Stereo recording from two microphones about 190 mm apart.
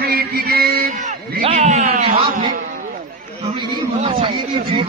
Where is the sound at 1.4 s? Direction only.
35° right (ahead or behind).